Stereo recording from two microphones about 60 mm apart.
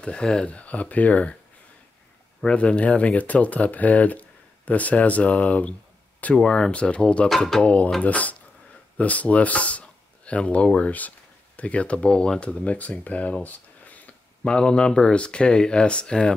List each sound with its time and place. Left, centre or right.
0.0 s speech: centre
2.4 s speech: centre
7.2 s speech: centre
7.6 s speech: left
14.5 s speech: centre